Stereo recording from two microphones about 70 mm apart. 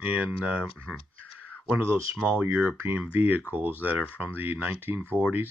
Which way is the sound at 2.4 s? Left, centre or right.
Right.